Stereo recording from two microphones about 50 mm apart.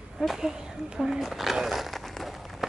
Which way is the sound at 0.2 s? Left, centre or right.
Right.